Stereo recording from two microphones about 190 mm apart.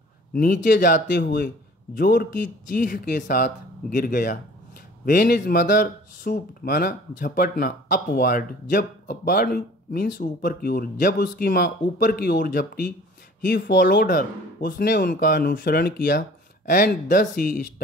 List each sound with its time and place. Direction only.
0.3 s a man's voice: 50° left (ahead or behind)